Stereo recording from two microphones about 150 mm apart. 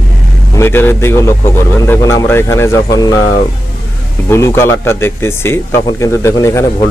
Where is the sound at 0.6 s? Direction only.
15° left (ahead or behind).